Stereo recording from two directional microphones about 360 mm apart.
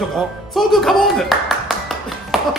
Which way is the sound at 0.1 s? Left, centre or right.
Centre.